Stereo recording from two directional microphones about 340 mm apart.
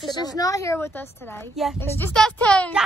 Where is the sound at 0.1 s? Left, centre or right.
Centre.